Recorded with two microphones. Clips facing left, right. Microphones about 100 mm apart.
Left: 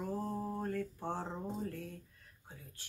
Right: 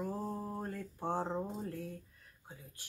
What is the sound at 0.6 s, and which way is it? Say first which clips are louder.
Speech: left 3 dB; 10° right (ahead or behind).